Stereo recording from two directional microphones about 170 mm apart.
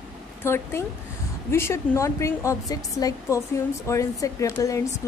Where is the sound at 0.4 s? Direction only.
15° left (ahead or behind).